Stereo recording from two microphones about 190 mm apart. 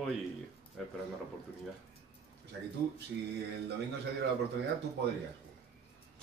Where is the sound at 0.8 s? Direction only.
Centre (ahead or behind).